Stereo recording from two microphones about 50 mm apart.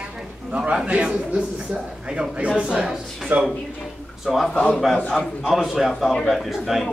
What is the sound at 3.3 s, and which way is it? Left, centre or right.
Speech, right.